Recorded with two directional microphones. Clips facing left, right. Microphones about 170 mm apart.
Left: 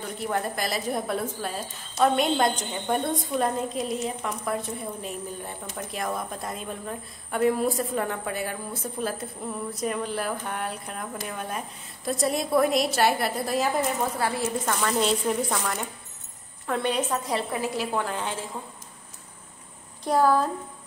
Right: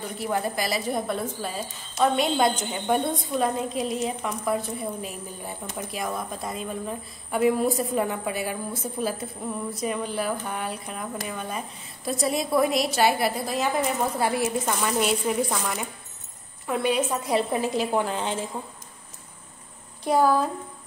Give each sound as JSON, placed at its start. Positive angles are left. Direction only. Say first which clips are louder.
{"t": 0.2, "sound": "a woman's voice", "louder": "right 2 dB", "side_deg": -5}
{"t": 9.7, "sound": "a woman's voice", "louder": "left 1 dB", "side_deg": 0}
{"t": 14.2, "sound": "a woman's voice", "louder": "right 2 dB", "side_deg": -15}
{"t": 17.5, "sound": "a woman's voice", "louder": "right 3 dB", "side_deg": -20}
{"t": 20.1, "sound": "a woman's voice", "louder": "right 1 dB", "side_deg": -5}